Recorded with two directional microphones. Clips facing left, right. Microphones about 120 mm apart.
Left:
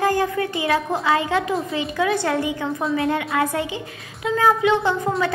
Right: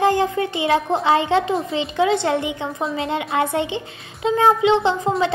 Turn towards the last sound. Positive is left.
turn(degrees=-25)  # may be behind; listen again after turning